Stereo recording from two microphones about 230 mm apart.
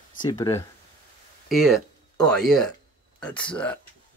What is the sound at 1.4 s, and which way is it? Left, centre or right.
Speech, centre.